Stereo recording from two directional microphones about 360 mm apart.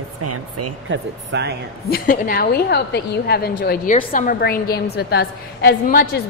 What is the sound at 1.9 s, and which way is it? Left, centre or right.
A woman's voice, left.